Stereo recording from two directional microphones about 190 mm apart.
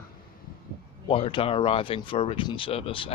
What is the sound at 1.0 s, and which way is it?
Speech, 30° left (ahead or behind).